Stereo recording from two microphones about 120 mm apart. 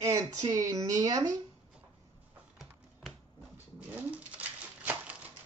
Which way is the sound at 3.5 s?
15° right (ahead or behind).